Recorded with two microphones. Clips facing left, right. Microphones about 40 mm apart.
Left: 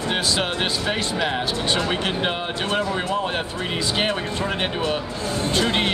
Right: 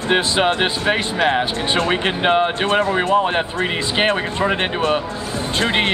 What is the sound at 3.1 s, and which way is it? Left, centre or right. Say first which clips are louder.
Speech: right 7 dB; right.